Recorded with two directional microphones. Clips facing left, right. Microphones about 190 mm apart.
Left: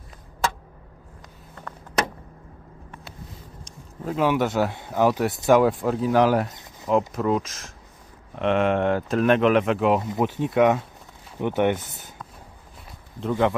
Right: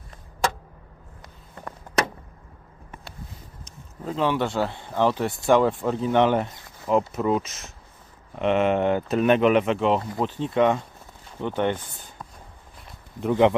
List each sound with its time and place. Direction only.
3.6 s speech: 5° left (ahead or behind)
13.2 s speech: 15° right (ahead or behind)